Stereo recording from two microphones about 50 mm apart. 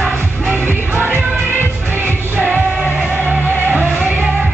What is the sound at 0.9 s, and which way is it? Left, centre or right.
Music, left.